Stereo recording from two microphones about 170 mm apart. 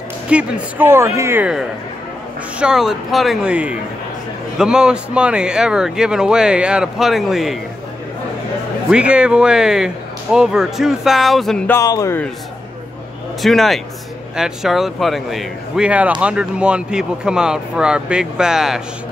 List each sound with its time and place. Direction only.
0.3 s speech: 10° right (ahead or behind)
8.9 s speech: 5° right (ahead or behind)
11.7 s speech: 20° left (ahead or behind)
13.4 s speech: centre (ahead or behind)